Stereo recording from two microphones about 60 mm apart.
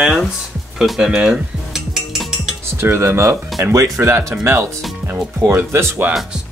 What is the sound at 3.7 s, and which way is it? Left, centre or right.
Speech, right.